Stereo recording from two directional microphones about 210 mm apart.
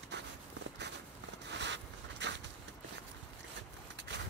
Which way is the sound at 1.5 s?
55° right (ahead or behind).